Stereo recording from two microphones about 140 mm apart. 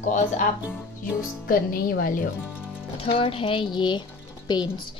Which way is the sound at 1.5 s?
90° left.